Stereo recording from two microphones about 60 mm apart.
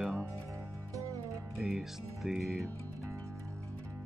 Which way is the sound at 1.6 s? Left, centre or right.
Centre.